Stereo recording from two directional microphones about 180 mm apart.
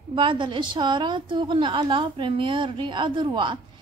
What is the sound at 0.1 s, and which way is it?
A woman's voice, 25° right (ahead or behind).